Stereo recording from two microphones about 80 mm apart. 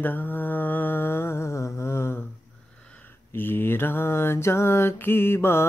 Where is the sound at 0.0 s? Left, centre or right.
Left.